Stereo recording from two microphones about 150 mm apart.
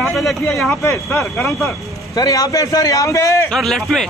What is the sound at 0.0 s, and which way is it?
Speech, centre (ahead or behind).